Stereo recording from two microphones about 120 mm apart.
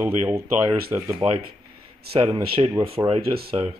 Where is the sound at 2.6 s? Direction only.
40° right (ahead or behind).